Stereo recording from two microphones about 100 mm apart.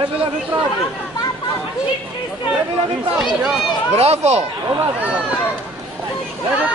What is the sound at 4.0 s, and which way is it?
Speech, 90° right.